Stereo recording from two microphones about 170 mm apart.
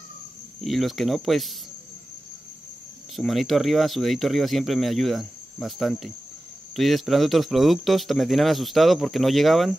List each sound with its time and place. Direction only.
0.6 s speech: centre (ahead or behind)
3.2 s speech: centre (ahead or behind)